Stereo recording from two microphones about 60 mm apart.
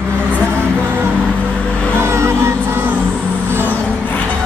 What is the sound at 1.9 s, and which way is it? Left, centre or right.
Music, right.